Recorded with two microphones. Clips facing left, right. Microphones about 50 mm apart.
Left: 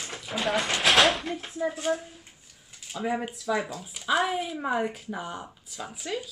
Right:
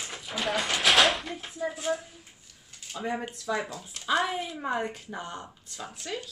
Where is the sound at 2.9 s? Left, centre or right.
Centre.